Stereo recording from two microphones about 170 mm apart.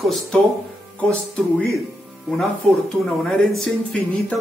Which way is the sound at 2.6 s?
5° left (ahead or behind).